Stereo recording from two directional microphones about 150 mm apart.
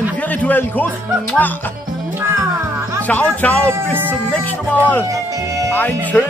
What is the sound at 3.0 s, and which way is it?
Speech, 10° left (ahead or behind).